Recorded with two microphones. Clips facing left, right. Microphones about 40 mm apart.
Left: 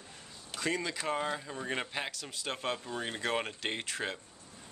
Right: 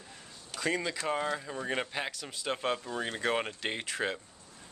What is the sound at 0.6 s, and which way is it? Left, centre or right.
Speech, centre.